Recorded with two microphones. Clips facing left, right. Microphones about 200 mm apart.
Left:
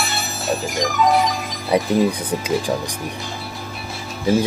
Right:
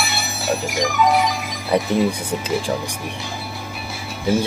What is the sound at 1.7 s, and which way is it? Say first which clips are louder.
Speech: left 1 dB; 10° left (ahead or behind).